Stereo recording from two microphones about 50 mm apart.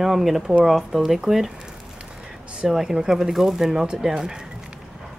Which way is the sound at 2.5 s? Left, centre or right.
Centre.